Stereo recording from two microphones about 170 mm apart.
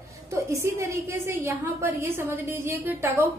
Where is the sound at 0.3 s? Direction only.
15° right (ahead or behind).